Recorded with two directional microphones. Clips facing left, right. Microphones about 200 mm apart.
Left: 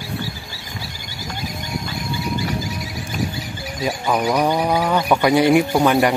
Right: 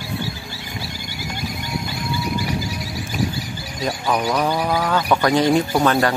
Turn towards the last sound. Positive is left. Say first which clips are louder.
# left 2 dB
turn(degrees=15)  # may be behind; listen again after turning